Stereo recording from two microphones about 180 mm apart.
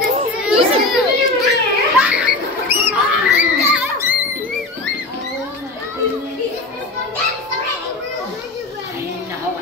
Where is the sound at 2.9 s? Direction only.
10° right (ahead or behind).